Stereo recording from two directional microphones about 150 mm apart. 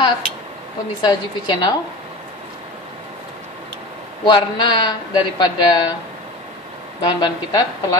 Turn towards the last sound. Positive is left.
turn(degrees=25)  # may be behind; listen again after turning